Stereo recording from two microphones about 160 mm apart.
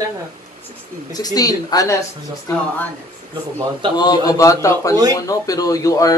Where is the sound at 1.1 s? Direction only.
25° left (ahead or behind).